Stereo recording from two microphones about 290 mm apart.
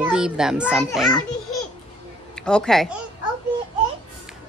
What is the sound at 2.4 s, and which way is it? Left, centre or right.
Speech, centre.